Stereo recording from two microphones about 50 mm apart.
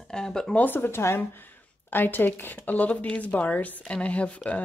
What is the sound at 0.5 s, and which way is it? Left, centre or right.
A woman's voice, left.